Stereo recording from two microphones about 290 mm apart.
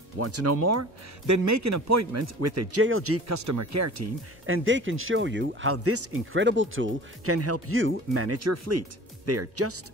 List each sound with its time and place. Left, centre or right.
0.2 s speech: right
2.8 s speech: right
3.3 s speech: right
4.5 s speech: right